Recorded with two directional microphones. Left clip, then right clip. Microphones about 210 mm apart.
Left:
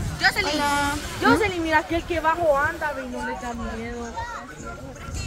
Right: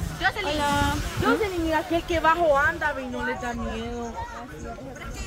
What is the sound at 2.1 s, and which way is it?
Speech, 55° right (ahead or behind).